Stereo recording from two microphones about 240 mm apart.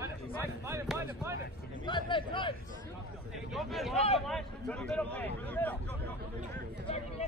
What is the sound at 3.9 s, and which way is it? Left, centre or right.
Speech, left.